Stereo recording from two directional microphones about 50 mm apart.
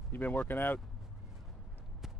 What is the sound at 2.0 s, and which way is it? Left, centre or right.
Walk, centre.